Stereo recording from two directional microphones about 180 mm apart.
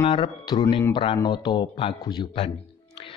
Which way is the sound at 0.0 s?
25° left (ahead or behind).